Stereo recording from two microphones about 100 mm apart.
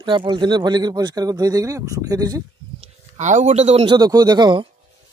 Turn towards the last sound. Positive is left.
turn(degrees=-50)  # may be behind; listen again after turning